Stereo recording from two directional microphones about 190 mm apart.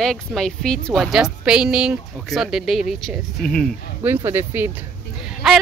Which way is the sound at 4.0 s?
10° right (ahead or behind).